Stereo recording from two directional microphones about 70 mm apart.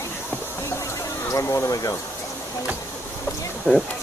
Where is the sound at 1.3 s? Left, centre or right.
Left.